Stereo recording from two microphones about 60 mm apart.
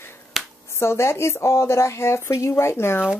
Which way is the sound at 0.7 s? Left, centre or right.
Left.